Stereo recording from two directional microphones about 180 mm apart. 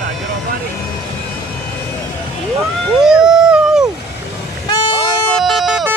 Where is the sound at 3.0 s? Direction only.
5° right (ahead or behind).